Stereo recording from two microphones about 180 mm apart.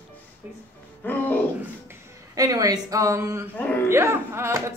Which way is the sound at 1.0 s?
10° left (ahead or behind).